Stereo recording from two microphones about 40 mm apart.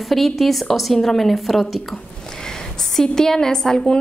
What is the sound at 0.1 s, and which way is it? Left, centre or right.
A woman's voice, centre.